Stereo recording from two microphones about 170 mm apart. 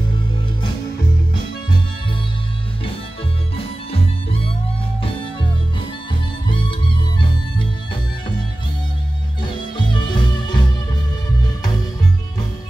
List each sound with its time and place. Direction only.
3.5 s music: 35° left (ahead or behind)
6.4 s music: 30° left (ahead or behind)
9.4 s music: 25° left (ahead or behind)